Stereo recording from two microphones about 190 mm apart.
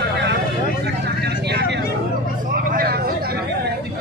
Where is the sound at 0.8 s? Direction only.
60° right (ahead or behind).